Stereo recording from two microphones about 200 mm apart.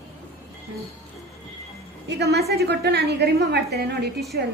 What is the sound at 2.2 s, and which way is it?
A woman's voice, 55° right (ahead or behind).